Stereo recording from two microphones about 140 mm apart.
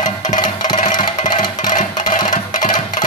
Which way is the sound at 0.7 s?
65° left (ahead or behind).